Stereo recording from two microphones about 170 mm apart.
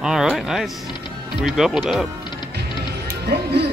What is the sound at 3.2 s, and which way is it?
Music, 70° right (ahead or behind).